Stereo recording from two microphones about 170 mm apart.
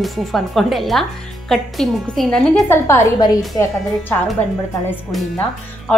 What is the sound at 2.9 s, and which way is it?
Speech, 20° left (ahead or behind).